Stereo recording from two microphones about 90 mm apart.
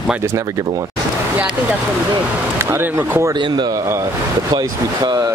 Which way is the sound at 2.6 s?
25° right (ahead or behind).